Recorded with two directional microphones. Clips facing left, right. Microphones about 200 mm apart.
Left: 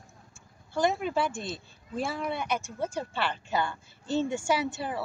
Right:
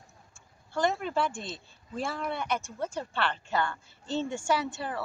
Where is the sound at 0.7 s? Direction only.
5° left (ahead or behind).